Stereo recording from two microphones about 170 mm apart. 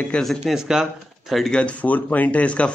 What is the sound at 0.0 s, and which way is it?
A man's voice, 5° left (ahead or behind).